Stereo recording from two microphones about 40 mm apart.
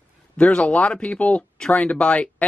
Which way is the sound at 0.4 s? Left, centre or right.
Left.